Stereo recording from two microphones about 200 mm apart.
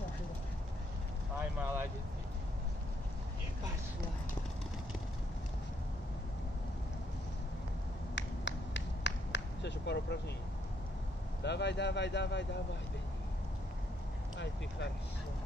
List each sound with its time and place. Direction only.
1.4 s vehicle: 10° right (ahead or behind)
8.1 s a sound: 65° left (ahead or behind)
11.4 s speech: 60° left (ahead or behind)